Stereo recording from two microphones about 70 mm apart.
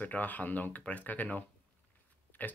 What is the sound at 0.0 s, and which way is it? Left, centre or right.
Speech, left.